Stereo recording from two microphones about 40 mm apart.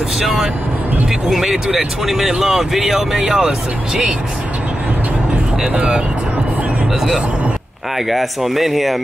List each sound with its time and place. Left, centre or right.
0.2 s speech: centre
5.7 s speech: right
8.1 s speech: centre